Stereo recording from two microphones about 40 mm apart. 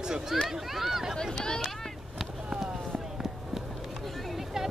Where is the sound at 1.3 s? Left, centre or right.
Centre.